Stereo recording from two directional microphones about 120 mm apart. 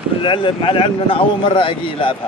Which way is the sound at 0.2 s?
45° left (ahead or behind).